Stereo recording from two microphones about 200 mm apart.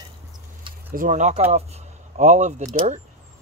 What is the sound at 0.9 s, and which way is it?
Speech, 40° right (ahead or behind).